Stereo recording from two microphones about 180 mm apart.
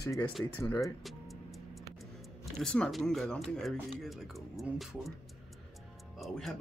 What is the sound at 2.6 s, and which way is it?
Speech, 5° left (ahead or behind).